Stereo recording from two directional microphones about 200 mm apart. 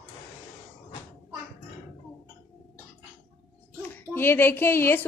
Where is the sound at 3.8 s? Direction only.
10° left (ahead or behind).